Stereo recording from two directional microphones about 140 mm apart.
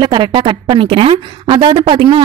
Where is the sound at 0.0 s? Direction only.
35° right (ahead or behind).